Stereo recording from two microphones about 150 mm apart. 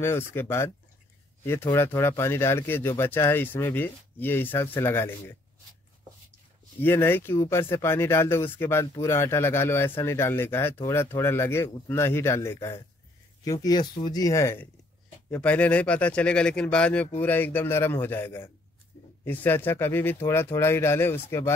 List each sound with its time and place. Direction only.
0.0 s speech: 15° left (ahead or behind)
6.8 s speech: 15° left (ahead or behind)